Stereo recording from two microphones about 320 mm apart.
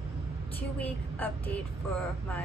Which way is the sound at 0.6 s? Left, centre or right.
Centre.